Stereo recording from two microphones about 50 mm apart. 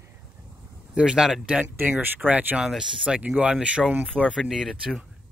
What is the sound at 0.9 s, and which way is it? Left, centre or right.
Speech, centre.